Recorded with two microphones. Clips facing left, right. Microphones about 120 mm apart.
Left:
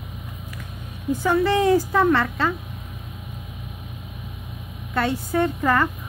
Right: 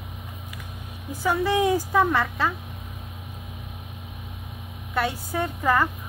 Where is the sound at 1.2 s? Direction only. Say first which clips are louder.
Left 3 dB; 10° right (ahead or behind).